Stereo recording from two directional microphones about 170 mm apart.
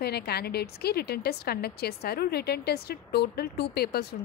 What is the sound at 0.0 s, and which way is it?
A woman's voice, 70° left (ahead or behind).